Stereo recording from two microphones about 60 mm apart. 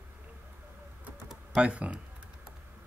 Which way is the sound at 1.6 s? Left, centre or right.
Right.